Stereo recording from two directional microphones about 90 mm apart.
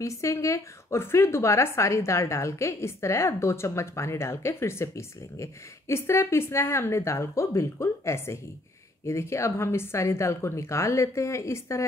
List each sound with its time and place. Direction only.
0.0 s a woman's voice: 35° left (ahead or behind)